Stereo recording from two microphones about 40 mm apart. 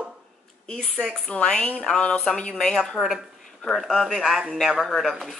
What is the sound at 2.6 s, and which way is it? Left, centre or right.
Speech, centre.